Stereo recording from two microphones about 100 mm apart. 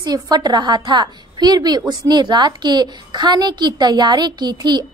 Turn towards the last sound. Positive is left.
turn(degrees=-45)  # may be behind; listen again after turning